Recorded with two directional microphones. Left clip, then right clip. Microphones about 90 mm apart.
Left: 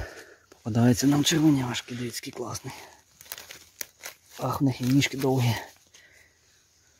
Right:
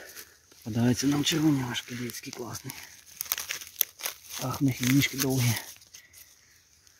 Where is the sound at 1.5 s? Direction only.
40° left (ahead or behind).